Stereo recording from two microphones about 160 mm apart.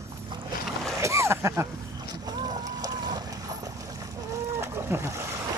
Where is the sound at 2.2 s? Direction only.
25° right (ahead or behind).